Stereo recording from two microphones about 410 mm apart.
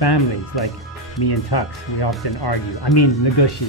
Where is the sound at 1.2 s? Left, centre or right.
Left.